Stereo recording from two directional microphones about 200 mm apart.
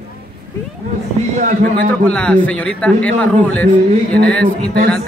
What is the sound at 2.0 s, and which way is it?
A man's voice, 5° left (ahead or behind).